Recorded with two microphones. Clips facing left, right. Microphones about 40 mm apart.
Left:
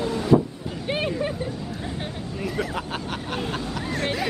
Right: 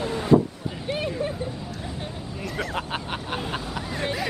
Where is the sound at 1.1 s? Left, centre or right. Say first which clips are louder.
Left 2 dB; centre.